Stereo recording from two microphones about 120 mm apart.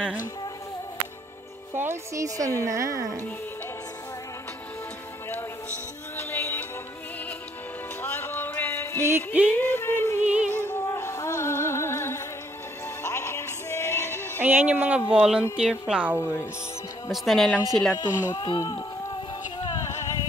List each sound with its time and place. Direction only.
1.7 s speech: 20° right (ahead or behind)
6.1 s music: 20° left (ahead or behind)
8.0 s music: 15° left (ahead or behind)
9.0 s speech: 15° right (ahead or behind)
9.6 s a sound: 20° left (ahead or behind)
10.5 s music: 15° left (ahead or behind)
14.4 s speech: 15° right (ahead or behind)
16.2 s speech: 20° left (ahead or behind)
17.1 s speech: centre (ahead or behind)
17.9 s speech: 35° left (ahead or behind)
19.8 s music: 25° left (ahead or behind)